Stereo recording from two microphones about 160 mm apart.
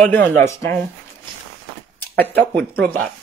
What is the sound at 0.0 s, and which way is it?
Speech, 10° left (ahead or behind).